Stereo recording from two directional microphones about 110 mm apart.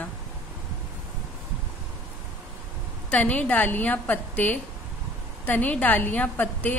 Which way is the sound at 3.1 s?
10° left (ahead or behind).